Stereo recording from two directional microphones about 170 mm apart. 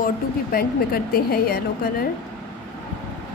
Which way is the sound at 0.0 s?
60° left (ahead or behind).